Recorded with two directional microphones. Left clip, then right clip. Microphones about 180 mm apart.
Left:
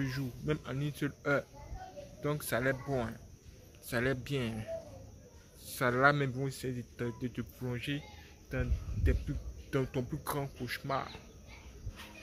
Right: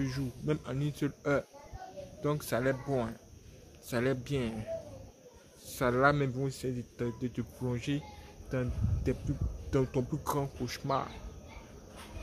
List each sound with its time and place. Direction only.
0.0 s a man's voice: 10° right (ahead or behind)
5.7 s speech: 5° right (ahead or behind)
7.1 s a man's voice: 10° right (ahead or behind)